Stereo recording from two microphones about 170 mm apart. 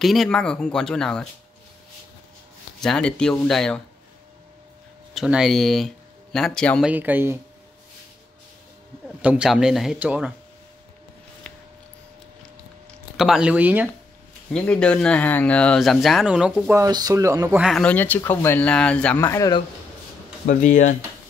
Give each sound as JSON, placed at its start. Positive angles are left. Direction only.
{"t": 0.0, "sound": "speech", "side_deg": 0}
{"t": 2.8, "sound": "speech", "side_deg": 5}
{"t": 5.1, "sound": "speech", "side_deg": -5}
{"t": 6.9, "sound": "speech", "side_deg": -10}
{"t": 9.2, "sound": "speech", "side_deg": -5}
{"t": 13.2, "sound": "speech", "side_deg": -5}
{"t": 14.5, "sound": "speech", "side_deg": 5}
{"t": 16.7, "sound": "a man's voice", "side_deg": -20}
{"t": 17.6, "sound": "speech", "side_deg": 0}
{"t": 20.4, "sound": "speech", "side_deg": 50}